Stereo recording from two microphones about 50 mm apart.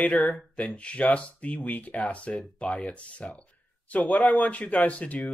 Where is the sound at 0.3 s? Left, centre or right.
Left.